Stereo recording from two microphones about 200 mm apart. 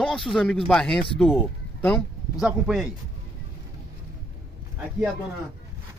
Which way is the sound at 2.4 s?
Centre (ahead or behind).